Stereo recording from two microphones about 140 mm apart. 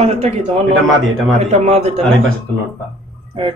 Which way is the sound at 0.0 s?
45° right (ahead or behind).